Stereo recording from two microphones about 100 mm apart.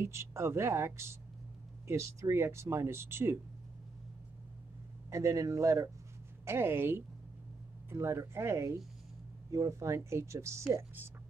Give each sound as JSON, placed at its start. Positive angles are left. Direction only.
{"t": 0.0, "sound": "speech", "side_deg": -25}
{"t": 5.1, "sound": "speech", "side_deg": -30}